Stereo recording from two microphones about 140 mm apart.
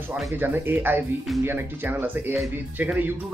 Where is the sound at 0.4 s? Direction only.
15° right (ahead or behind).